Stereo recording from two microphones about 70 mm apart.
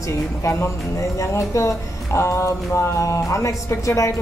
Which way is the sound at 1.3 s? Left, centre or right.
Left.